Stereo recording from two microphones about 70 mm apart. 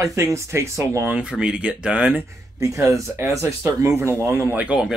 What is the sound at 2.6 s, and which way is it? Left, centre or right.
Speech, right.